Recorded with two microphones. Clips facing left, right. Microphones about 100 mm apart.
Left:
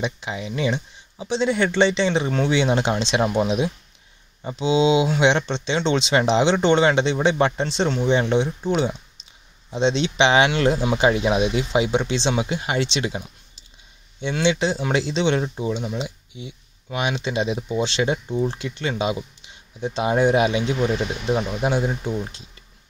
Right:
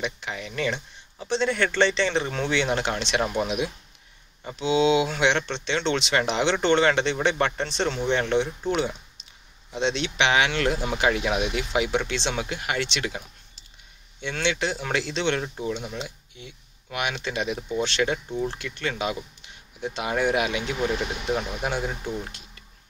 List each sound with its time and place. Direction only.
0.0 s speech: 20° left (ahead or behind)
14.3 s speech: 20° left (ahead or behind)